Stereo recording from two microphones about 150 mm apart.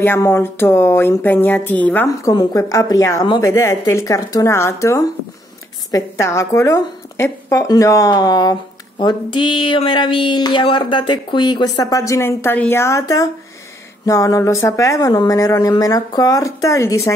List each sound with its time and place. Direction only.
0.0 s a woman's voice: 15° left (ahead or behind)
2.0 s speech: 25° left (ahead or behind)